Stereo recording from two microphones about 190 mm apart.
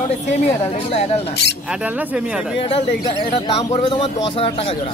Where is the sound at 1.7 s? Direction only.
5° right (ahead or behind).